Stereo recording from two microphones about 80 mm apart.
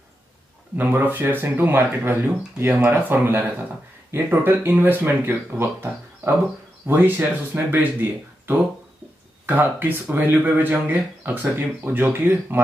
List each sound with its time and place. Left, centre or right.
0.7 s speech: right